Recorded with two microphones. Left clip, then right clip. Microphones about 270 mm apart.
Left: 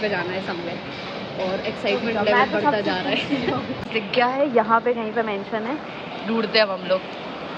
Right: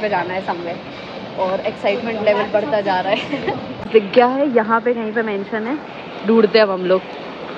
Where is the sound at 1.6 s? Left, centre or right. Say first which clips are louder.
Right 4 dB; right.